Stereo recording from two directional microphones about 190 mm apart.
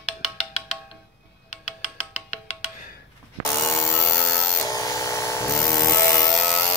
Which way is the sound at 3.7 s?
10° left (ahead or behind).